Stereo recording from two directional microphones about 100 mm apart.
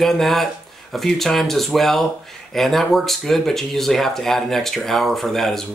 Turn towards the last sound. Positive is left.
turn(degrees=5)  # may be behind; listen again after turning